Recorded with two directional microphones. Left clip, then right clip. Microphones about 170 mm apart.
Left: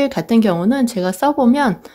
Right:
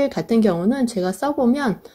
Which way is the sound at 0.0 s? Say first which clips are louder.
Left 2 dB; 15° left (ahead or behind).